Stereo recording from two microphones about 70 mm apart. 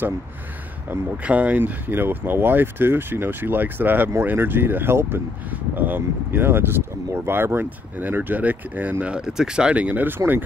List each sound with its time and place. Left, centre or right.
0.8 s speech: right
9.0 s speech: centre; by 10.4 s right